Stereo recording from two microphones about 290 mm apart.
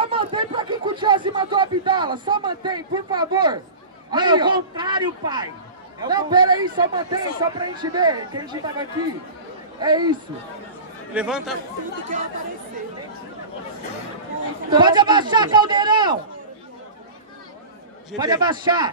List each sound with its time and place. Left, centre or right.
0.0 s a sound: centre
4.1 s speech: centre
11.1 s speech: centre
14.8 s speech: centre
18.1 s speech: centre